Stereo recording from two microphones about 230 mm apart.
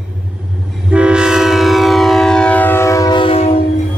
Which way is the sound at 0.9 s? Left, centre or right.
Centre.